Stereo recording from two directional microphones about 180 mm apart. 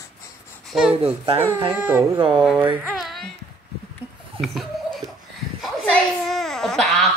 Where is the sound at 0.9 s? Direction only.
35° right (ahead or behind).